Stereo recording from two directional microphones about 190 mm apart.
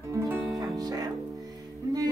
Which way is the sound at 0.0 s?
15° right (ahead or behind).